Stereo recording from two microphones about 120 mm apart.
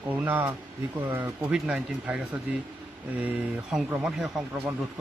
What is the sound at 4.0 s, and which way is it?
Speech, 5° right (ahead or behind).